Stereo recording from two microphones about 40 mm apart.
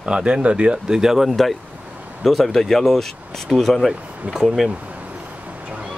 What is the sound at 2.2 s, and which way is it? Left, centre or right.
Speech, centre.